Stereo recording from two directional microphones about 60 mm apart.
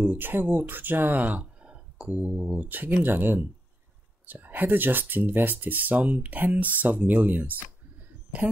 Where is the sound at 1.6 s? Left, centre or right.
Centre.